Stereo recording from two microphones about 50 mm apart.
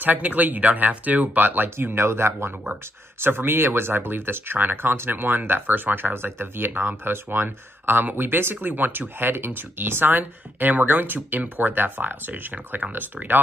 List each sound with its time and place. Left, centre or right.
0.0 s speech: right
6.1 s speech: right